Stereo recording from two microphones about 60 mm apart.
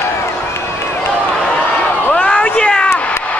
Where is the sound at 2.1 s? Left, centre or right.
Centre.